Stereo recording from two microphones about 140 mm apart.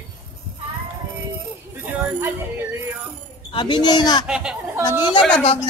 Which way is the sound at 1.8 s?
15° right (ahead or behind).